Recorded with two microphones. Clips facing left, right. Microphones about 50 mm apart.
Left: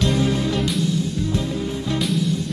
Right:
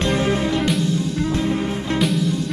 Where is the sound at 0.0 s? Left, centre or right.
Right.